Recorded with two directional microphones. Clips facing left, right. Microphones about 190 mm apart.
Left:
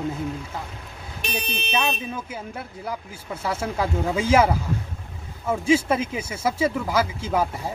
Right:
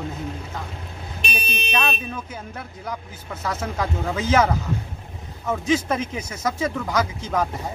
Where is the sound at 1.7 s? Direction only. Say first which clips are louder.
Even; 10° left (ahead or behind).